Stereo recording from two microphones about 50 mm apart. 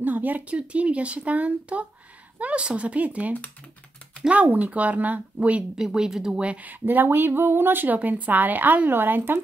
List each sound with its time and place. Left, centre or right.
0.0 s speech: right
5.6 s speech: centre
6.4 s speech: right